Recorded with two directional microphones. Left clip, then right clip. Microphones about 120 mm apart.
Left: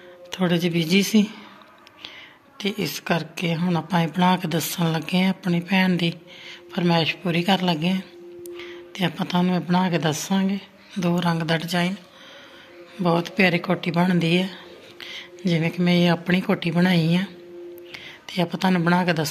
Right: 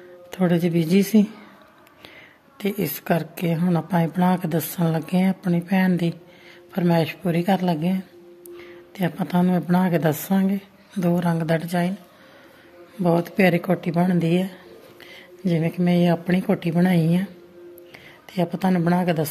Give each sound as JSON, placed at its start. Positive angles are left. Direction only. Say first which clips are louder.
{"t": 0.3, "sound": "a woman's voice", "louder": "right 1 dB", "side_deg": -55}
{"t": 2.6, "sound": "a woman's voice", "louder": "even", "side_deg": -60}
{"t": 13.0, "sound": "speech", "louder": "right 1 dB", "side_deg": -50}